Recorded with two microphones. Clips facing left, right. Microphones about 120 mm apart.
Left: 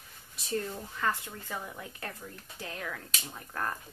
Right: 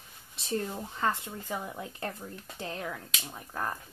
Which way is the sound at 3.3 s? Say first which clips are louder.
Right 1 dB; 15° right (ahead or behind).